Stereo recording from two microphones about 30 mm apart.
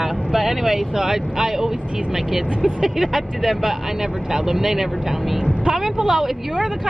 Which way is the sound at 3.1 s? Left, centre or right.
Centre.